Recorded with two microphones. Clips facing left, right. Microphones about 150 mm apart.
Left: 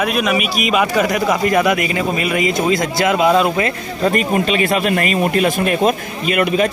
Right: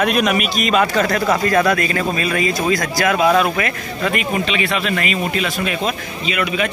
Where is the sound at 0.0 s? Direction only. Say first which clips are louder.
Even; centre (ahead or behind).